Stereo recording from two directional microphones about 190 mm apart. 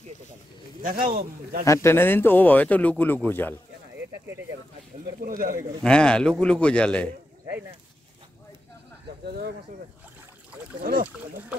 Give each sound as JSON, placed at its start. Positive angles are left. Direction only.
{"t": 0.8, "sound": "speech", "side_deg": -45}
{"t": 1.6, "sound": "speech", "side_deg": 15}
{"t": 5.2, "sound": "speech", "side_deg": -50}
{"t": 5.9, "sound": "a man's voice", "side_deg": 5}
{"t": 9.2, "sound": "speech", "side_deg": -55}
{"t": 10.8, "sound": "speech", "side_deg": -50}